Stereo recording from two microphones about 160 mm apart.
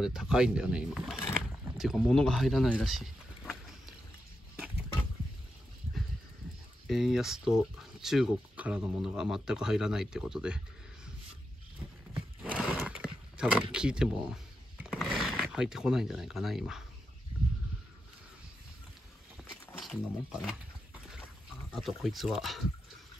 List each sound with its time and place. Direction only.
0.0 s speech: centre (ahead or behind)
6.9 s speech: centre (ahead or behind)
12.4 s a sound: 5° right (ahead or behind)
19.8 s speech: 5° right (ahead or behind)
21.6 s speech: centre (ahead or behind)